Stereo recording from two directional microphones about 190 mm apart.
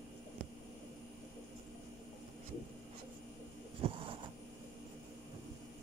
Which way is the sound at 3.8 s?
30° right (ahead or behind).